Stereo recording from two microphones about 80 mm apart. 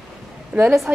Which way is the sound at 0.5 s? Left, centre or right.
Centre.